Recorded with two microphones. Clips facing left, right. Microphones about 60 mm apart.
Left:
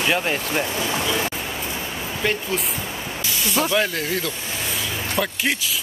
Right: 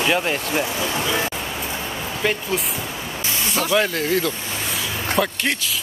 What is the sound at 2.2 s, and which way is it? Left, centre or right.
Speech, centre.